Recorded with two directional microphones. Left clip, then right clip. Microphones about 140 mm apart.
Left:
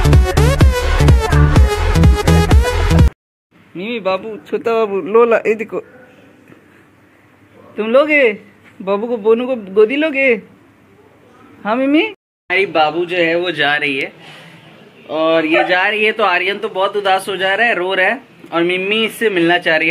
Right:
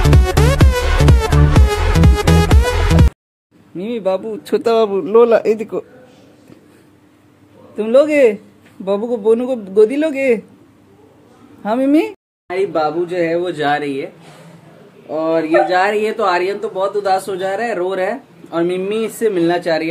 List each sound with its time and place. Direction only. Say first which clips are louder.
0.0 s music: even; centre (ahead or behind)
3.7 s speech: even; 40° right (ahead or behind)
4.5 s a man's voice: right 2 dB; 60° right (ahead or behind); by 5.9 s 40° right (ahead or behind)
7.7 s speech: even; 20° right (ahead or behind)
9.0 s a man's voice: even; centre (ahead or behind)
9.3 s a woman's voice: left 1 dB; 30° right (ahead or behind)
11.6 s a woman's voice: even; 30° right (ahead or behind)
13.1 s a man's voice: left 2 dB; 5° right (ahead or behind)
15.1 s speech: left 1 dB; 10° right (ahead or behind)